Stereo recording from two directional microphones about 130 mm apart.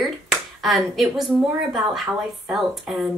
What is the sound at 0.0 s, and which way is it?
Speech, centre (ahead or behind).